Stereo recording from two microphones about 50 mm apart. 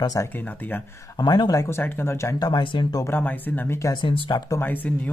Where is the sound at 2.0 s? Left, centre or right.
Left.